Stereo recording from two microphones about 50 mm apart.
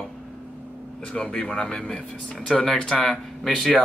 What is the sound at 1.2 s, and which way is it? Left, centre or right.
Speech, centre.